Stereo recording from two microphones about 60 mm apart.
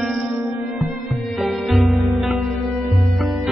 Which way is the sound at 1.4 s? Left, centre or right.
Centre.